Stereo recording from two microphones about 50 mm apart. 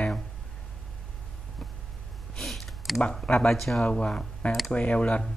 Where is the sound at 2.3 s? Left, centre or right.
Centre.